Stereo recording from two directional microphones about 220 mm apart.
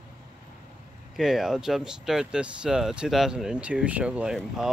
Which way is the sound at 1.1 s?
Centre (ahead or behind).